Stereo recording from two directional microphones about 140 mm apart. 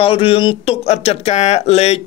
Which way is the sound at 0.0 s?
40° left (ahead or behind).